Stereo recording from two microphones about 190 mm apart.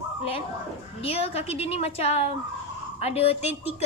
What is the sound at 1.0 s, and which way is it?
A woman's voice, 30° left (ahead or behind).